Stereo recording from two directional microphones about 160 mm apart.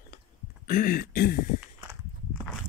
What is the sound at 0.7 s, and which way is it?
Speech, 60° left (ahead or behind).